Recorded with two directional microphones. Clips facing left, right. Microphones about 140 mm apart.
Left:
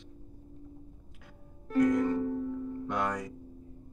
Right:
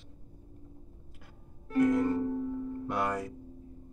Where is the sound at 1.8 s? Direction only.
5° right (ahead or behind).